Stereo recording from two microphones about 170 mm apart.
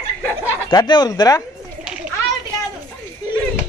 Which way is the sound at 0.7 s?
25° left (ahead or behind).